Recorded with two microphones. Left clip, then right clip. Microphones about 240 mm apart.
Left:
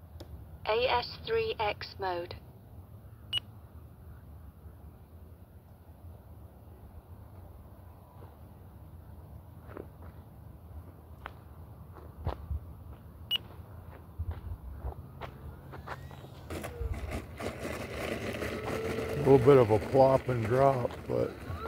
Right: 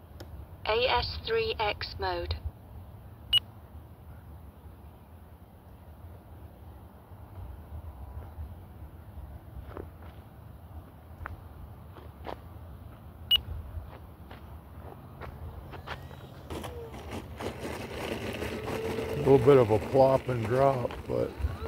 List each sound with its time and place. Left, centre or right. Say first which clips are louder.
0.6 s a woman's voice: right 2 dB; centre
9.8 s walk: right 2 dB; centre
15.7 s walk: right 2 dB; right
16.4 s vehicle: right 1 dB; left